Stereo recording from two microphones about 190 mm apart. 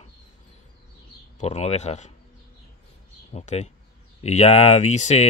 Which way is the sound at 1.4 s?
35° left (ahead or behind).